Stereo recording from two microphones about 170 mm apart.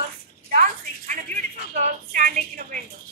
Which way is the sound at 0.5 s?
50° right (ahead or behind).